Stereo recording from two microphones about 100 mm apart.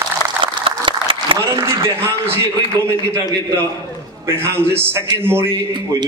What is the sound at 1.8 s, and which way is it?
Speech, 25° right (ahead or behind).